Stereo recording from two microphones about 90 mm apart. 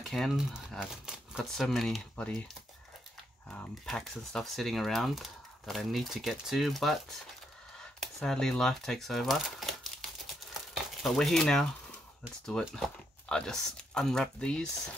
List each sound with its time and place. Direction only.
0.0 s speech: 5° left (ahead or behind)
2.2 s speech: 10° left (ahead or behind)
3.4 s speech: 5° left (ahead or behind)
10.5 s crumpling: centre (ahead or behind)
12.4 s speech: 5° left (ahead or behind)